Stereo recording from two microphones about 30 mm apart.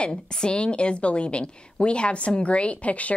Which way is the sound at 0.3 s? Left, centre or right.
Left.